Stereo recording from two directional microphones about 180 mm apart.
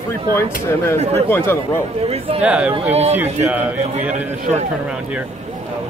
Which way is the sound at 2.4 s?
5° right (ahead or behind).